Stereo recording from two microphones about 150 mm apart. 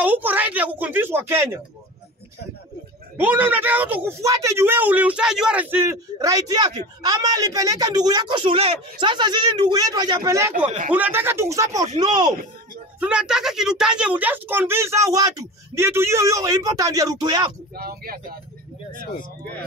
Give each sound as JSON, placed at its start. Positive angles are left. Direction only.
{"t": 0.0, "sound": "a woman's voice", "side_deg": -10}
{"t": 3.2, "sound": "a woman's voice", "side_deg": -10}
{"t": 4.2, "sound": "a woman's voice", "side_deg": -20}
{"t": 13.0, "sound": "a woman's voice", "side_deg": -5}
{"t": 17.7, "sound": "speech", "side_deg": -85}